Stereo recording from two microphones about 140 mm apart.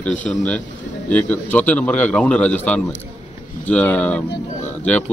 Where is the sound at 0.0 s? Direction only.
10° left (ahead or behind).